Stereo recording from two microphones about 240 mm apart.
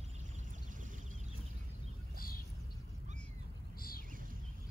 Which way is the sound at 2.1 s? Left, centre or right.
Left.